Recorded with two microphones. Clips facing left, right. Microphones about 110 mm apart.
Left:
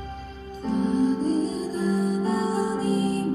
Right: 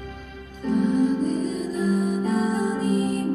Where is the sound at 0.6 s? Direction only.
35° left (ahead or behind).